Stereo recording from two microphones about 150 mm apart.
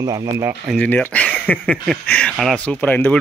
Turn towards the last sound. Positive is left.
turn(degrees=10)  # may be behind; listen again after turning